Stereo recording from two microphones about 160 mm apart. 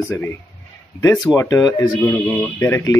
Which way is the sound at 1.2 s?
20° left (ahead or behind).